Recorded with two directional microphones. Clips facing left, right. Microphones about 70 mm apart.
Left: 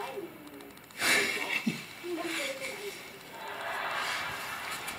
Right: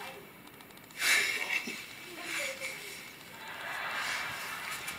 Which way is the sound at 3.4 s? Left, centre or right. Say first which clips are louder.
Left 4 dB; centre.